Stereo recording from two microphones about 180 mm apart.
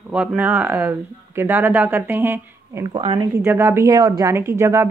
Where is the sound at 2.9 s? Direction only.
30° right (ahead or behind).